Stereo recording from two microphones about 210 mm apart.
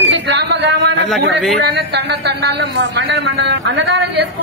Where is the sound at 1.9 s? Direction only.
55° right (ahead or behind).